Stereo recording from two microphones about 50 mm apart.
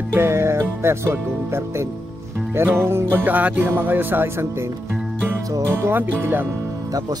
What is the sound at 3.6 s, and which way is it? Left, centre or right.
Speech, right.